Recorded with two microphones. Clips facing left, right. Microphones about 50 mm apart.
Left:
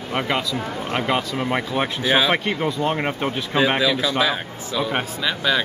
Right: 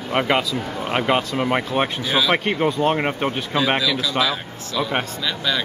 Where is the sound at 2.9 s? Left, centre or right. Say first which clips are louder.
Right 2 dB; centre.